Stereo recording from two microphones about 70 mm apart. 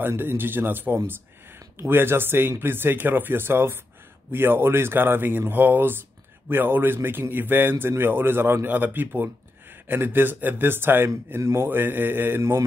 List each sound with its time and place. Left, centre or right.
0.0 s a man's voice: right